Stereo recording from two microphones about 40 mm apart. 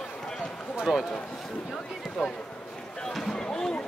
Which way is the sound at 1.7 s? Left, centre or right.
Centre.